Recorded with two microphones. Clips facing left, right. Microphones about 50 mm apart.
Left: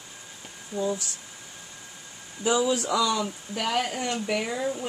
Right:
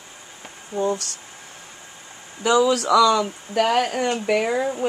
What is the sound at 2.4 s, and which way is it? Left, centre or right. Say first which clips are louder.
Speech: right 6 dB; right.